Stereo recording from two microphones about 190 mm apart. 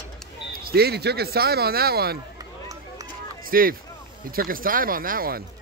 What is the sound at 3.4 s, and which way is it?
Speech, 50° right (ahead or behind).